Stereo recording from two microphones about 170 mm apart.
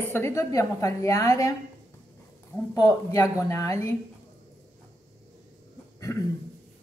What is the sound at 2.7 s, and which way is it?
Speech, 20° left (ahead or behind).